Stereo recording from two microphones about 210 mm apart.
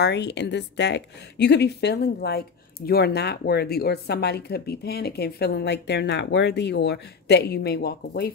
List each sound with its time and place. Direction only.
0.0 s a woman's voice: 55° left (ahead or behind)